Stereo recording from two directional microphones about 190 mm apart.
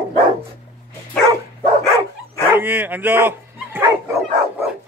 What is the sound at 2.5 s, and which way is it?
Dog, 10° right (ahead or behind).